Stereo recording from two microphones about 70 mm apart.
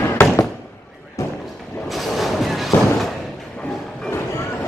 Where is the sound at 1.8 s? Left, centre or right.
Centre.